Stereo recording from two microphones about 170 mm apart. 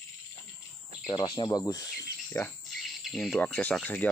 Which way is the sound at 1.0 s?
25° left (ahead or behind).